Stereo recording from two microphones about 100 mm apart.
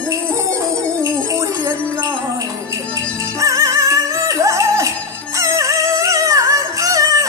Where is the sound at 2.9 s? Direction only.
35° right (ahead or behind).